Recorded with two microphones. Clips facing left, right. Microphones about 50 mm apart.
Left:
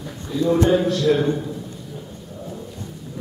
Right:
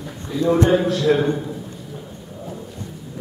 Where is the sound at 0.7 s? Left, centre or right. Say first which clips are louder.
Right 1 dB; centre.